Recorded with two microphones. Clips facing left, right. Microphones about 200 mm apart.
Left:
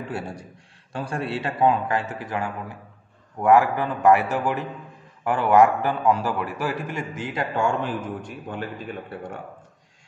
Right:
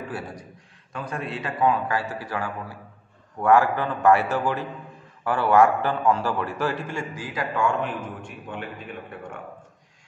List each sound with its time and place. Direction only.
0.1 s a man's voice: 30° left (ahead or behind)